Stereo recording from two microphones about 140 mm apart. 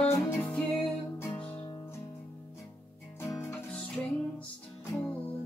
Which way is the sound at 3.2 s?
20° left (ahead or behind).